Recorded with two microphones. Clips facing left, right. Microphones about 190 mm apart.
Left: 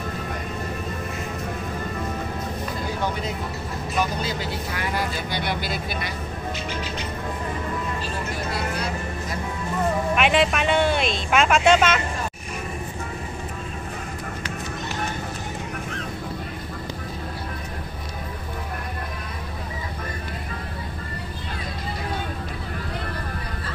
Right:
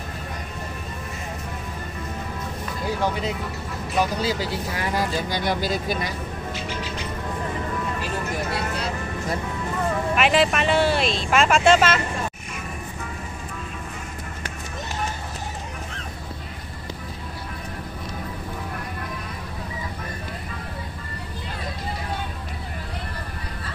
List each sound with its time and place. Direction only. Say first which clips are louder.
4.2 s speech: right 3 dB; 35° right (ahead or behind)
10.1 s speech: right 2 dB; centre (ahead or behind)